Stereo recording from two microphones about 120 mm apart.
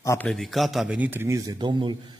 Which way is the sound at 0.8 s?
15° right (ahead or behind).